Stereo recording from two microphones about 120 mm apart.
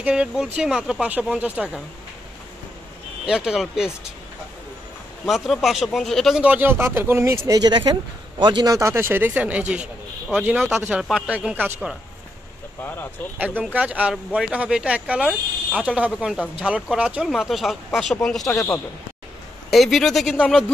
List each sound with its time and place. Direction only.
0.0 s speech: 10° right (ahead or behind)
3.3 s speech: 5° right (ahead or behind)
5.2 s speech: centre (ahead or behind)
6.4 s speech: 15° right (ahead or behind); by 8.7 s 40° right (ahead or behind)
8.7 s speech: 20° right (ahead or behind)
12.8 s speech: 15° left (ahead or behind)
13.7 s speech: 10° right (ahead or behind)
19.7 s speech: centre (ahead or behind)